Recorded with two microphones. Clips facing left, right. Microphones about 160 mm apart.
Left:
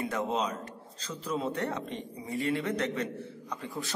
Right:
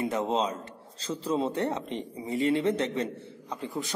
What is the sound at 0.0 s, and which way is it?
A man's voice, 25° right (ahead or behind).